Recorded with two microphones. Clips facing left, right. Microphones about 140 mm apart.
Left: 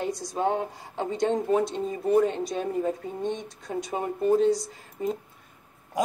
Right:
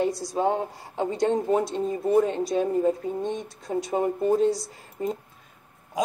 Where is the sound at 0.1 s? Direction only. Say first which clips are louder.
Right 2 dB; 10° right (ahead or behind).